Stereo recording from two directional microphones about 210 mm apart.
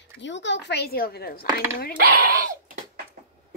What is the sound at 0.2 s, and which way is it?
A woman's voice, 60° left (ahead or behind).